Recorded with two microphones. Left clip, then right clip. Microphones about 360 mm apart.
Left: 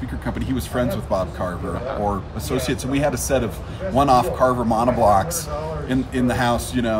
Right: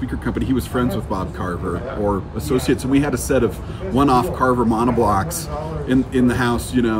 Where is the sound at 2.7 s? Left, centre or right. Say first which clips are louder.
Right 2 dB; centre.